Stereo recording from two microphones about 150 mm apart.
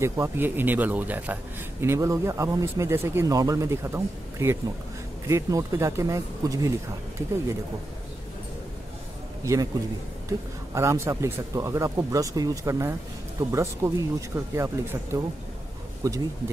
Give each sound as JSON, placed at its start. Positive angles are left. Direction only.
{"t": 0.0, "sound": "a man's voice", "side_deg": -15}
{"t": 9.4, "sound": "a man's voice", "side_deg": -20}
{"t": 10.7, "sound": "speech", "side_deg": -20}